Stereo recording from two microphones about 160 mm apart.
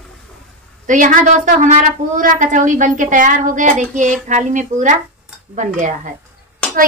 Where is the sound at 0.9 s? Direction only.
55° right (ahead or behind).